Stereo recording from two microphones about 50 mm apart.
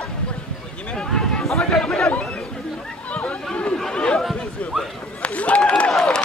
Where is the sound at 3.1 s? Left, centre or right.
Left.